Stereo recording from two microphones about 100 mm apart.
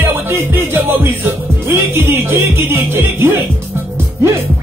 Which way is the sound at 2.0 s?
20° right (ahead or behind).